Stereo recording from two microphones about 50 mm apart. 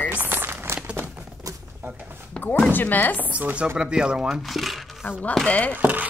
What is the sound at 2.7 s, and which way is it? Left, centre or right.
Speech, left.